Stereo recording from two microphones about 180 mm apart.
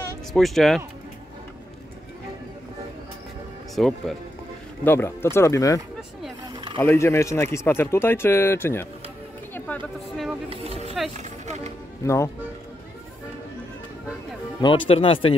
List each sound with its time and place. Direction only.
0.3 s speech: centre (ahead or behind)
3.7 s speech: centre (ahead or behind)
4.8 s speech: 15° left (ahead or behind)
6.5 s a sound: 25° right (ahead or behind)
6.8 s speech: 15° left (ahead or behind)
9.5 s a sound: 5° left (ahead or behind)
10.5 s a sound: 35° right (ahead or behind)
11.1 s music: 40° right (ahead or behind)
12.0 s speech: 15° left (ahead or behind)
14.6 s speech: 30° left (ahead or behind)